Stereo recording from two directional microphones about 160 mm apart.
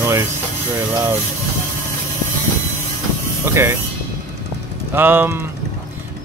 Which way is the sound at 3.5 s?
15° right (ahead or behind).